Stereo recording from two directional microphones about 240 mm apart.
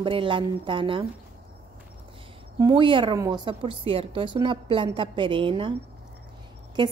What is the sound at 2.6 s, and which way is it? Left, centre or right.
A woman's voice, centre.